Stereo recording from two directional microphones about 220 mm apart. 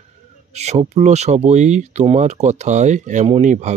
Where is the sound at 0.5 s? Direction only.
30° right (ahead or behind).